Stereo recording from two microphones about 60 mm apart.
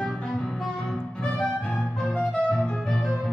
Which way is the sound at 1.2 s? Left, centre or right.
Centre.